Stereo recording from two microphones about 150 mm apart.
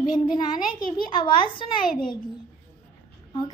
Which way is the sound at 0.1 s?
30° left (ahead or behind).